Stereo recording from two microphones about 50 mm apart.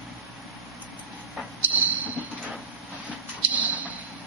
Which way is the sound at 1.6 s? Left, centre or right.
Right.